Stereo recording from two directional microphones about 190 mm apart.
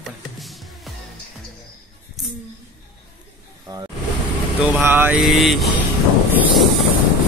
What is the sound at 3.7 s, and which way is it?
Vehicle, 20° right (ahead or behind).